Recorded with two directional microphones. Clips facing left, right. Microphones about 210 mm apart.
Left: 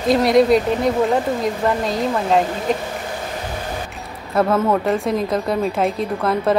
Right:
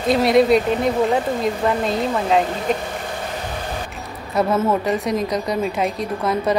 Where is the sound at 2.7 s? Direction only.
Centre (ahead or behind).